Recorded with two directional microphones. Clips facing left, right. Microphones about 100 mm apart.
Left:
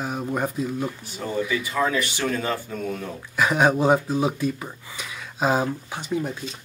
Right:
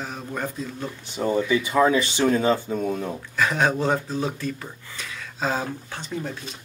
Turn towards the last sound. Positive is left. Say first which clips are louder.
# left 4 dB
turn(degrees=15)  # may be behind; listen again after turning